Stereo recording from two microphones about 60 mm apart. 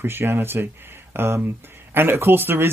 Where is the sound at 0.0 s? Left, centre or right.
Right.